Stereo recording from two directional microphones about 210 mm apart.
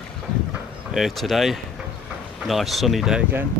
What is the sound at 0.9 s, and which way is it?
Speech, centre (ahead or behind).